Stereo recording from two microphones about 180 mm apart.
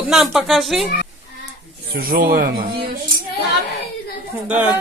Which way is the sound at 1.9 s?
55° right (ahead or behind).